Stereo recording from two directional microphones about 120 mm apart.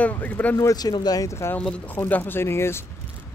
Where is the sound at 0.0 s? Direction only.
15° left (ahead or behind).